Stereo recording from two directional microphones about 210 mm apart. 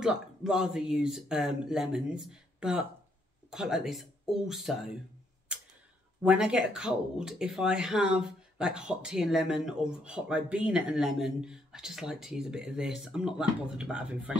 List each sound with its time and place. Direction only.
0.0 s speech: 5° right (ahead or behind)
5.5 s a sound: 5° right (ahead or behind)
6.2 s speech: 5° right (ahead or behind)